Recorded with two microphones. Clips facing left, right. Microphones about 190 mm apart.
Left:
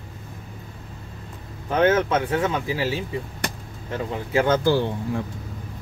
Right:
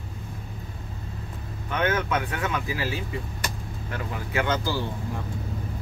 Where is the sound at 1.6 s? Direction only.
30° left (ahead or behind).